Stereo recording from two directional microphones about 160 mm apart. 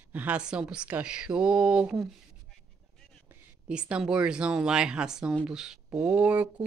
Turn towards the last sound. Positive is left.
turn(degrees=-10)  # may be behind; listen again after turning